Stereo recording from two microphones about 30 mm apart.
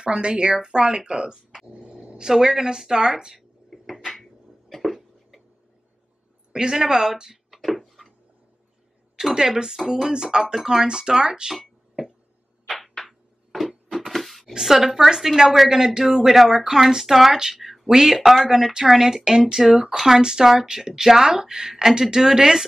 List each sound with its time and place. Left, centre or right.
0.0 s speech: right
1.8 s a sound: right
2.3 s speech: centre
3.7 s a sound: centre
6.5 s speech: centre
7.5 s a sound: centre
9.3 s speech: right
10.1 s speech: right
11.6 s a sound: centre
14.6 s a woman's voice: centre
19.6 s speech: centre
20.2 s speech: right